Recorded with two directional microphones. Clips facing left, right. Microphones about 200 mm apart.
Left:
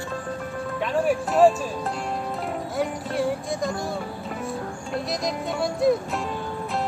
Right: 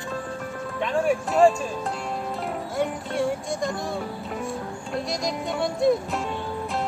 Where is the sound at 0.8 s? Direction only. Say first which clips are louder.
Even; centre (ahead or behind).